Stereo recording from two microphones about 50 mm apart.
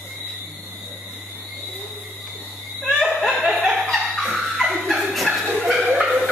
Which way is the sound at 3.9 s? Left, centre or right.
Centre.